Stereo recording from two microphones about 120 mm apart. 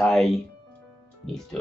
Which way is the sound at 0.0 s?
Centre (ahead or behind).